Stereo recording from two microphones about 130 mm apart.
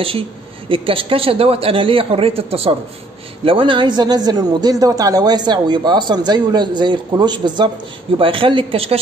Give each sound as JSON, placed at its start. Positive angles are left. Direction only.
{"t": 0.7, "sound": "speech", "side_deg": -45}